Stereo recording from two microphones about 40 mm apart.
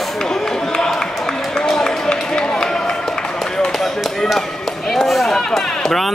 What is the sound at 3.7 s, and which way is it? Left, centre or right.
Tap, centre.